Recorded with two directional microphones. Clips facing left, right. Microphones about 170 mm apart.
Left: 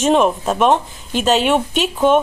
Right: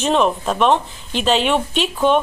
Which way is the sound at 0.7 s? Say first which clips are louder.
Left 1 dB; 45° left (ahead or behind).